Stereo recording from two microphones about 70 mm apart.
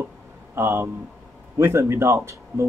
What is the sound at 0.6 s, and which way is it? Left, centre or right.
Speech, right.